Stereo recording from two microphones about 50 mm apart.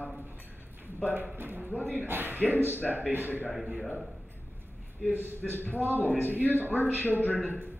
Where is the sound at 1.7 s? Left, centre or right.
Left.